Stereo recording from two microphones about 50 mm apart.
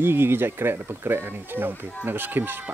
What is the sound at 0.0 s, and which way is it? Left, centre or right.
Speech, right.